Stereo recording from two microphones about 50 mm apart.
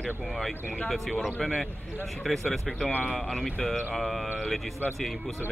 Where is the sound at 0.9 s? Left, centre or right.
Centre.